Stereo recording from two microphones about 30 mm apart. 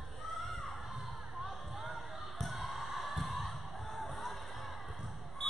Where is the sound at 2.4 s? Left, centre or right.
Centre.